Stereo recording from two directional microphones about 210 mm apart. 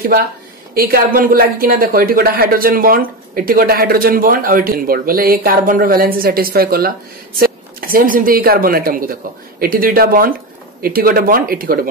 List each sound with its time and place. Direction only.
0.7 s speech: 45° right (ahead or behind)